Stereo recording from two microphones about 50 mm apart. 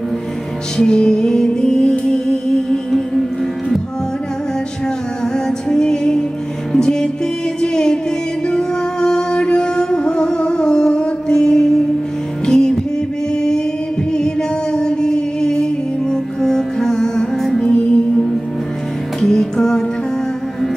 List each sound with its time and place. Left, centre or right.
0.7 s music: centre
5.2 s music: centre
19.2 s music: centre